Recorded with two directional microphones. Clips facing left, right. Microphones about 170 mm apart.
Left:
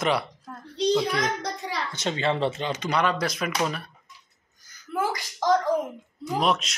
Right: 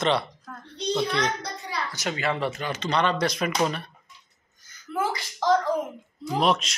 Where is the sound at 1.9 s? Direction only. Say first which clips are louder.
Left 2 dB; 25° left (ahead or behind).